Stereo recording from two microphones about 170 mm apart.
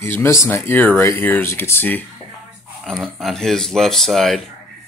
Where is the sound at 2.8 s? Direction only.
Centre (ahead or behind).